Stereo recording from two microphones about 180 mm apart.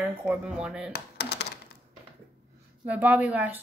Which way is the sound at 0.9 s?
65° left (ahead or behind).